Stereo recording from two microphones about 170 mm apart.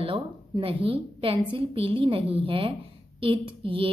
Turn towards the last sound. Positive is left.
turn(degrees=-30)  # may be behind; listen again after turning